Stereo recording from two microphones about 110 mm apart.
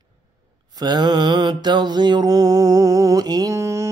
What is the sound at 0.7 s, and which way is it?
Mantra, 40° right (ahead or behind).